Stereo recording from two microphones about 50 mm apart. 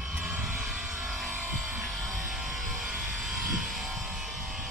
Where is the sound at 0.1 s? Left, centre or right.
Right; by 1.3 s centre.